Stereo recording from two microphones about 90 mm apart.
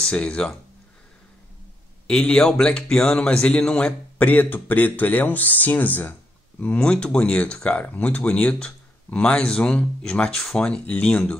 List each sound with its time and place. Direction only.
0.0 s speech: 10° left (ahead or behind)
2.0 s speech: 10° left (ahead or behind)
4.3 s speech: 20° left (ahead or behind)